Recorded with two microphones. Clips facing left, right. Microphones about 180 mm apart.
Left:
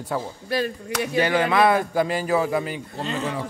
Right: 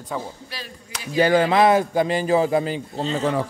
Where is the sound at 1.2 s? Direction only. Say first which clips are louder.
Right 4 dB; 35° right (ahead or behind).